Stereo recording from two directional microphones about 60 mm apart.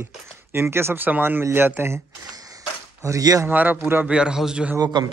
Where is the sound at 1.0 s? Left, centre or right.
Right.